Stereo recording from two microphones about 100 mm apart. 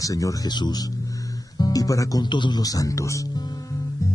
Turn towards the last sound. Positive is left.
turn(degrees=30)  # may be behind; listen again after turning